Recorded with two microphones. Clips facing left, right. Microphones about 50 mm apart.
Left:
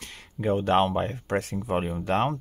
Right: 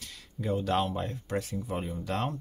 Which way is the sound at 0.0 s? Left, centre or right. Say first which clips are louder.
Left 7 dB; left.